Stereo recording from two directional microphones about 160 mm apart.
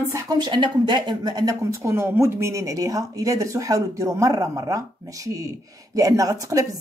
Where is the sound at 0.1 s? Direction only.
25° right (ahead or behind).